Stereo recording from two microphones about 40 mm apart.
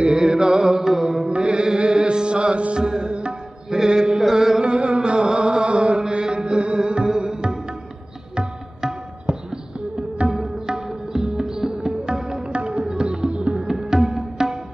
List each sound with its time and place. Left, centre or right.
0.0 s music: centre
1.3 s music: right
10.3 s music: centre; by 13.6 s right
13.6 s music: centre